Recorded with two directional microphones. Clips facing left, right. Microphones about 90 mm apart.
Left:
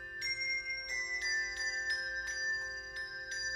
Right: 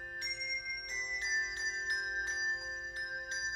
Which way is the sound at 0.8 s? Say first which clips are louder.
Right 1 dB; 30° right (ahead or behind).